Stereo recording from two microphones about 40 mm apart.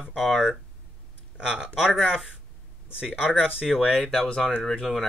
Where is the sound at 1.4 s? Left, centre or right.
Right.